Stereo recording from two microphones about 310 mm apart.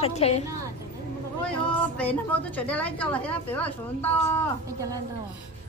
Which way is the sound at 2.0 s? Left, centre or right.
Centre.